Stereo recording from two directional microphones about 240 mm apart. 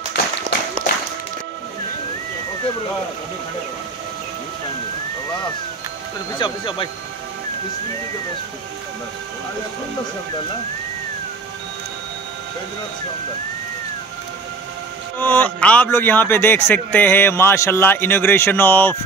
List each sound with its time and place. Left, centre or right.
6.3 s speech: centre
15.1 s a man's voice: centre